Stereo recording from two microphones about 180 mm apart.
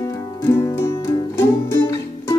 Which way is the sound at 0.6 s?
15° left (ahead or behind).